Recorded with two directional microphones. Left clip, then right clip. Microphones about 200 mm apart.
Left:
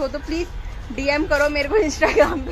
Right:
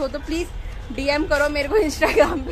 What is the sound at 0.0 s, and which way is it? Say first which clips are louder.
A woman's voice: left 1 dB; 10° left (ahead or behind).